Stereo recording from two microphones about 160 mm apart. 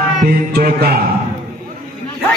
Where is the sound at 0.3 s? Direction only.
75° right (ahead or behind).